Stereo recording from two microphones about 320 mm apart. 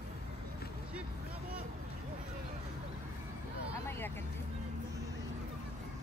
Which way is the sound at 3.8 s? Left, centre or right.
Centre.